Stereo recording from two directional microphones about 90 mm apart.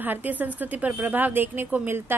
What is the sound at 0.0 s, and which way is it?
A woman's voice, 20° right (ahead or behind).